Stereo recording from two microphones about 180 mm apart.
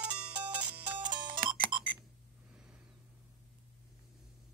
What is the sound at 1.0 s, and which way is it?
Music, 25° right (ahead or behind).